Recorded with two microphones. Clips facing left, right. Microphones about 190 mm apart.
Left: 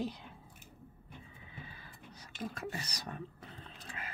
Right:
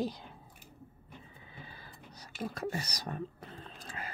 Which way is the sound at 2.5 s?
40° right (ahead or behind).